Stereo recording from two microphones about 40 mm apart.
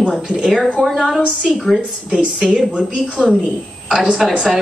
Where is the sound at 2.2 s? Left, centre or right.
Right.